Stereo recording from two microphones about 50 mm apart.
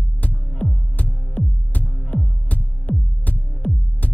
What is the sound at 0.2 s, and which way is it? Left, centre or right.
Music, left.